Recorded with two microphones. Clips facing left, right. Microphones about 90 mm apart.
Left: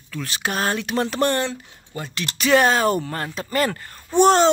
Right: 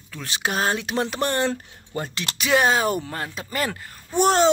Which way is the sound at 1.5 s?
40° right (ahead or behind).